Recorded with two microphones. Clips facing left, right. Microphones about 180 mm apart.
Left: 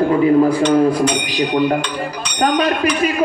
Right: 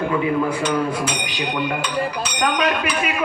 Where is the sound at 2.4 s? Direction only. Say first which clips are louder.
Left 5 dB; 35° left (ahead or behind).